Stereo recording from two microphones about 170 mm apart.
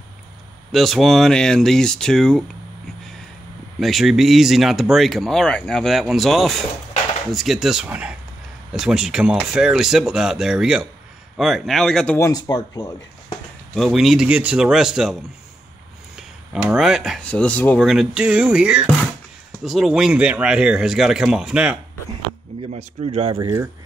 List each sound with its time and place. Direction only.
0.7 s speech: centre (ahead or behind)
3.8 s speech: centre (ahead or behind)
12.2 s speech: 20° left (ahead or behind)
13.7 s speech: centre (ahead or behind)
16.2 s speech: 5° right (ahead or behind)
17.8 s speech: 5° right (ahead or behind)
22.6 s speech: 35° right (ahead or behind)